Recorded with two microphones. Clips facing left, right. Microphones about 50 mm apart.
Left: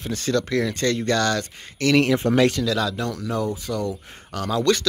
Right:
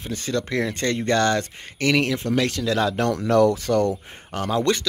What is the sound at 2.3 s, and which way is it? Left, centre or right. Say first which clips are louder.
Speech: left 3 dB; left.